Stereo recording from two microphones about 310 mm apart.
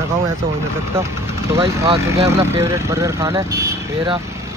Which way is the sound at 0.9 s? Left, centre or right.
Centre.